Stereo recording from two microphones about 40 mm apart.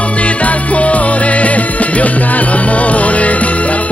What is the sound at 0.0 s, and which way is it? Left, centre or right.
Music, left.